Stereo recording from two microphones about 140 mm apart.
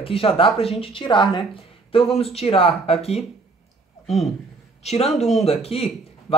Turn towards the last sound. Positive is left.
turn(degrees=45)  # may be behind; listen again after turning